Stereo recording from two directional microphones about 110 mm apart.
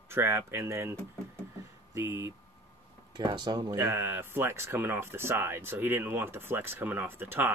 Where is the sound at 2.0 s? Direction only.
25° right (ahead or behind).